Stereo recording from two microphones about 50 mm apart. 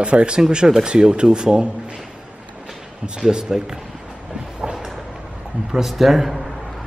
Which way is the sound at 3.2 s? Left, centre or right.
Centre.